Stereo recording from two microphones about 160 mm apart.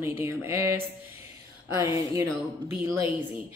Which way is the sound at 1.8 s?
20° right (ahead or behind).